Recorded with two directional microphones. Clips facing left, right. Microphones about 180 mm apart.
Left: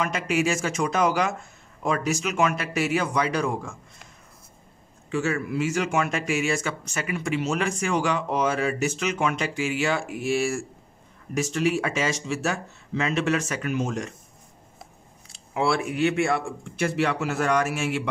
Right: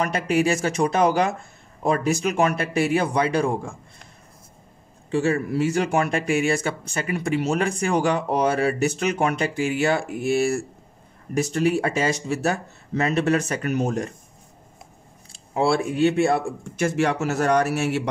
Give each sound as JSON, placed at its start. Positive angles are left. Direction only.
{"t": 0.0, "sound": "speech", "side_deg": -35}
{"t": 5.1, "sound": "speech", "side_deg": -30}
{"t": 15.5, "sound": "speech", "side_deg": -30}